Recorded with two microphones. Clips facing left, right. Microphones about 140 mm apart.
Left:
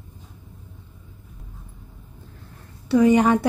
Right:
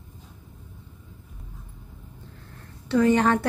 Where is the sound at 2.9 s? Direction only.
10° left (ahead or behind).